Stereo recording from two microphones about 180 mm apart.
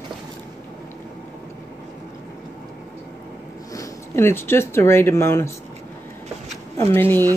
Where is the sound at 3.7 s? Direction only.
15° left (ahead or behind).